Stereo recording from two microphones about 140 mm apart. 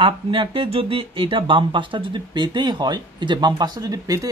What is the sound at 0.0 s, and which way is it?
Speech, 40° right (ahead or behind).